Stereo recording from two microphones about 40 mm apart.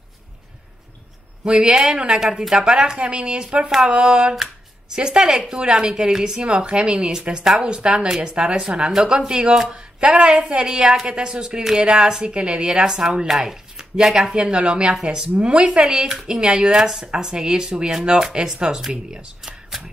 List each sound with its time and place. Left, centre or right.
1.4 s a woman's voice: right
7.7 s a woman's voice: right
9.9 s a woman's voice: right